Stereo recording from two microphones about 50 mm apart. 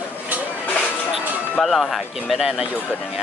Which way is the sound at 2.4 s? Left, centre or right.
Centre.